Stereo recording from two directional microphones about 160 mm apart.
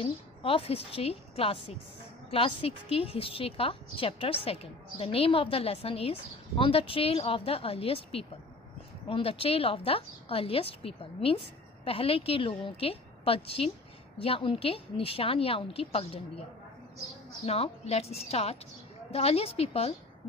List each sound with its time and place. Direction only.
0.0 s a woman's voice: 35° left (ahead or behind)
17.5 s a woman's voice: 40° left (ahead or behind)